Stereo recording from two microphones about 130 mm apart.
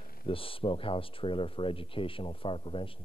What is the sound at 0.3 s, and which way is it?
A man's voice, 45° left (ahead or behind).